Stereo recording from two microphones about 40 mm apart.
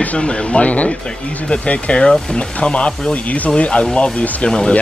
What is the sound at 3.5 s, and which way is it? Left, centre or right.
Speech, left.